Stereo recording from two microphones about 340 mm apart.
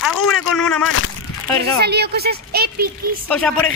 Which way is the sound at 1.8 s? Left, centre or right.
Right.